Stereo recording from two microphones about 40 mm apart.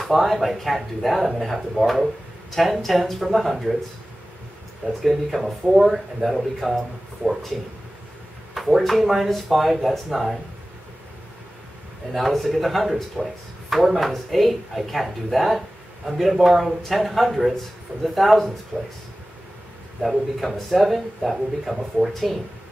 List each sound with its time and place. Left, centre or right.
0.0 s speech: centre
5.0 s speech: centre
8.5 s speech: centre
12.1 s speech: centre
18.7 s speech: centre
20.0 s speech: centre